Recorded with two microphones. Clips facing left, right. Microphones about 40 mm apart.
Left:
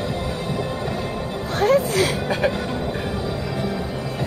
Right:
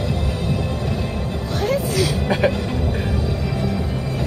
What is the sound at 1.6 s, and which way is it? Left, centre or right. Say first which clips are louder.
Music: left 3 dB; left.